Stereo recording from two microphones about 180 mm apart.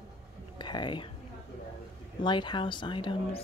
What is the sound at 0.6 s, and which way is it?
Speech, 25° left (ahead or behind).